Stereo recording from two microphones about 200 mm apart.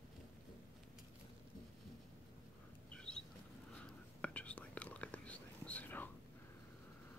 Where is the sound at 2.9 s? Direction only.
5° left (ahead or behind).